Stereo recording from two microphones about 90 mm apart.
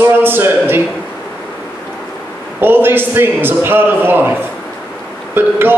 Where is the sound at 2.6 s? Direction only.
25° right (ahead or behind).